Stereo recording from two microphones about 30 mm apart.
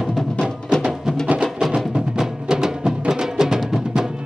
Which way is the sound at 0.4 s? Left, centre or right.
Left.